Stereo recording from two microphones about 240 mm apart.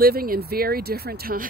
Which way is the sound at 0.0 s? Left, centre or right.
Right.